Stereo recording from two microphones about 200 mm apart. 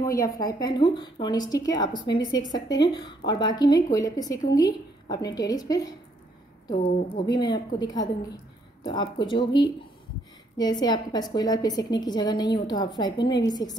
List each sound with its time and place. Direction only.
0.0 s a woman's voice: 15° left (ahead or behind)
6.7 s a woman's voice: 35° left (ahead or behind)
7.2 s a woman's voice: 20° left (ahead or behind)